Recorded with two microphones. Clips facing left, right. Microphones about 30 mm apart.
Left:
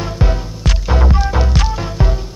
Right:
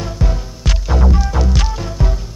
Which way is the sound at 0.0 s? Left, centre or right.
Centre.